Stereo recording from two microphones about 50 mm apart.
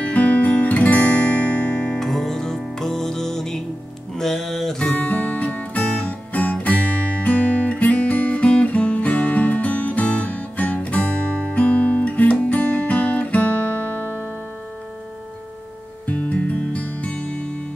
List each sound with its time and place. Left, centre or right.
0.0 s music: left
2.0 s music: centre
4.9 s music: left
16.1 s music: left